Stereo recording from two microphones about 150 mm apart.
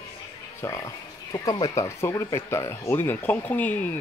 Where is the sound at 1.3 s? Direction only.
25° left (ahead or behind).